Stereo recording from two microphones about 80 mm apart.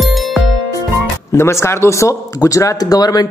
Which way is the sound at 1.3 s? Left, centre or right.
Left.